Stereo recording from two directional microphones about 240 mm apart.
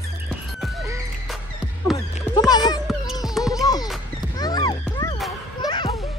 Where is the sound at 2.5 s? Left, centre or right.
Centre.